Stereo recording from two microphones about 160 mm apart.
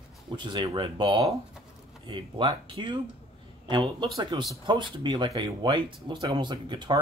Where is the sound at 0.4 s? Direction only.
30° right (ahead or behind).